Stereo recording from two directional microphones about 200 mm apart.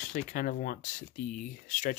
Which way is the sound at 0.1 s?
40° left (ahead or behind).